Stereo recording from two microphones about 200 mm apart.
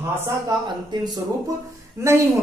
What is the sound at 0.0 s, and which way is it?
Speech, 10° right (ahead or behind).